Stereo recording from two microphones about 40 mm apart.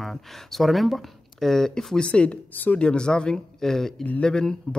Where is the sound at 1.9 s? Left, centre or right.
Left.